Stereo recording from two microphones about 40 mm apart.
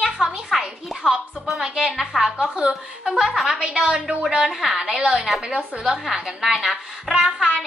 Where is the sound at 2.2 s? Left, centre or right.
Centre.